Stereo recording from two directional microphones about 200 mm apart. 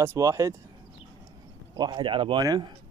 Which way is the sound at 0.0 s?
15° right (ahead or behind).